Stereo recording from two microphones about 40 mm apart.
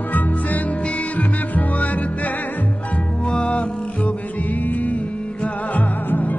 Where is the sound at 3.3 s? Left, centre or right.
Left.